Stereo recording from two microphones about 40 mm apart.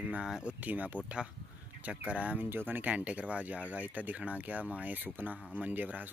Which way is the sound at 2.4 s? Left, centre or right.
Right.